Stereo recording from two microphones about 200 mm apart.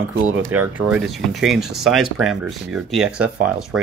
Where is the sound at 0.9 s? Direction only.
Centre (ahead or behind).